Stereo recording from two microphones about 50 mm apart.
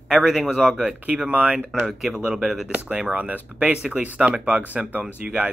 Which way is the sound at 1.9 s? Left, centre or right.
Centre.